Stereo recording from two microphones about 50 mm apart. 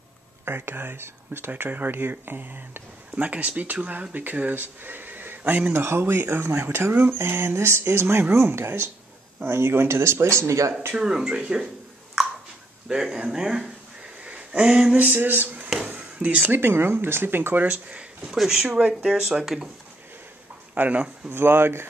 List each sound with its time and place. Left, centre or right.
0.5 s speech: right
1.6 s speech: right
5.7 s speech: right
7.2 s speech: right
11.0 s speech: centre
12.8 s speech: centre
14.2 s a sound: right
15.1 s speech: right
17.6 s speech: right
18.3 s speech: centre
18.7 s speech: right
19.0 s speech: centre
20.7 s speech: right
21.3 s speech: right